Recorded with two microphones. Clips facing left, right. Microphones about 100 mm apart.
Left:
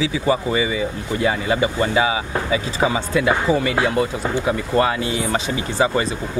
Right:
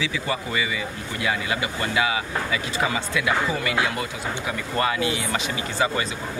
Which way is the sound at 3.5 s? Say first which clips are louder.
Left 6 dB; 35° left (ahead or behind).